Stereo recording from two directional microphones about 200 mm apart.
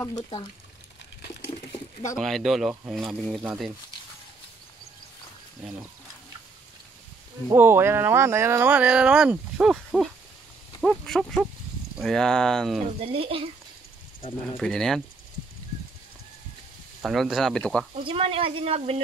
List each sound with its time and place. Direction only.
2.1 s speech: centre (ahead or behind)
7.4 s speech: 10° right (ahead or behind)
13.0 s speech: 30° right (ahead or behind)
14.6 s speech: 5° left (ahead or behind)
17.0 s speech: centre (ahead or behind)
18.0 s speech: 30° right (ahead or behind)